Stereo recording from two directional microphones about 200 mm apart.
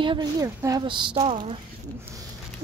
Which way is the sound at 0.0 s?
20° right (ahead or behind).